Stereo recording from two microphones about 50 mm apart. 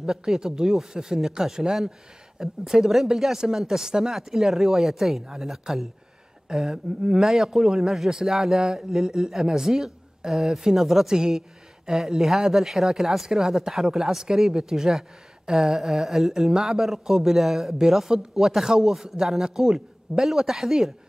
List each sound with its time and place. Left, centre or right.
0.0 s a man's voice: centre